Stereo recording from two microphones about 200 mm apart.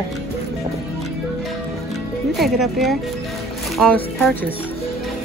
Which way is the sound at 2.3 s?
Centre (ahead or behind).